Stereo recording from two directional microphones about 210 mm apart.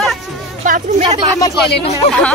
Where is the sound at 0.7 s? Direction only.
35° right (ahead or behind).